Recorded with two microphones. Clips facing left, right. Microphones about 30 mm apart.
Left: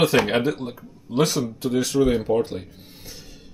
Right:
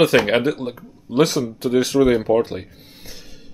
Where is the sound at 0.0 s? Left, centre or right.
Centre.